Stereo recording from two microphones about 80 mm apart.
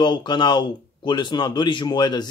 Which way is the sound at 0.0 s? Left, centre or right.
Left.